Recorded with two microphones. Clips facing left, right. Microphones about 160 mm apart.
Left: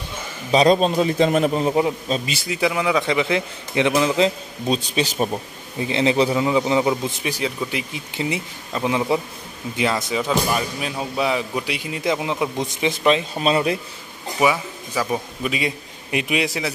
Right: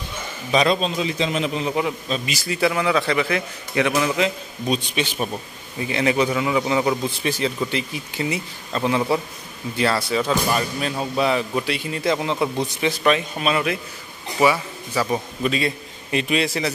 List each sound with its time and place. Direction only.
0.5 s speech: 35° left (ahead or behind)
0.7 s a man's voice: 50° left (ahead or behind)
1.7 s a man's voice: 30° left (ahead or behind)
2.4 s a man's voice: 15° left (ahead or behind); by 5.3 s 35° left (ahead or behind)
5.3 s a man's voice: 25° left (ahead or behind)
8.1 s a man's voice: 20° left (ahead or behind)
14.4 s a man's voice: 15° left (ahead or behind)